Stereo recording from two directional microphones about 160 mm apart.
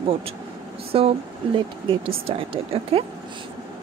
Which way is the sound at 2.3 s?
35° right (ahead or behind).